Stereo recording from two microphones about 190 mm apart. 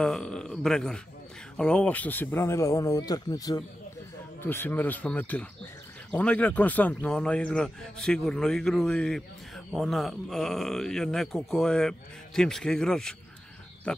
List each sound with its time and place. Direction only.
0.0 s speech: 5° left (ahead or behind)